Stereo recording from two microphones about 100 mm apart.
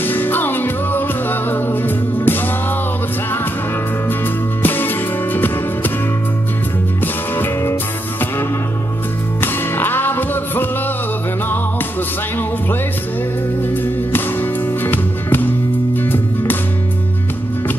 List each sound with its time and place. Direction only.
0.0 s music: 20° left (ahead or behind)
4.6 s music: 20° left (ahead or behind)
7.3 s music: 20° left (ahead or behind)
9.4 s music: 20° left (ahead or behind)
14.1 s music: 20° left (ahead or behind)